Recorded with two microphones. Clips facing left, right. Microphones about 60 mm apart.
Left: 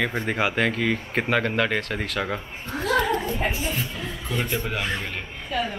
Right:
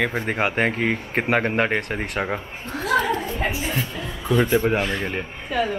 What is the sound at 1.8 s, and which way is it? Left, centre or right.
Speech, centre.